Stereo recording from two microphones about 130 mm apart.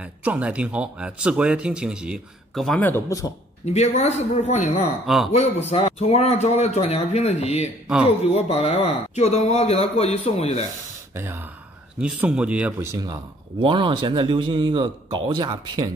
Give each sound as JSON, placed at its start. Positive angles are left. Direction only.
{"t": 0.2, "sound": "speech", "side_deg": -10}
{"t": 3.6, "sound": "speech", "side_deg": 60}
{"t": 5.0, "sound": "speech", "side_deg": 0}
{"t": 5.7, "sound": "a man's voice", "side_deg": 55}
{"t": 12.0, "sound": "speech", "side_deg": -10}
{"t": 12.9, "sound": "speech", "side_deg": -30}
{"t": 13.6, "sound": "speech", "side_deg": -40}